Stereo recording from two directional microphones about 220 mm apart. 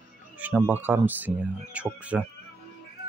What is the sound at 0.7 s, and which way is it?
Speech, 10° right (ahead or behind).